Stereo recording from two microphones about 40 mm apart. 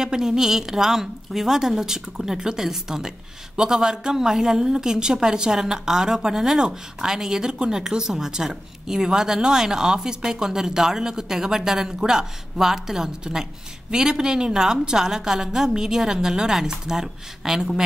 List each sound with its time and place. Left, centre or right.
0.0 s a woman's voice: centre